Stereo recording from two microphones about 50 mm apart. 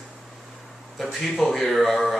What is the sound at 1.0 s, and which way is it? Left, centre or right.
Speech, centre.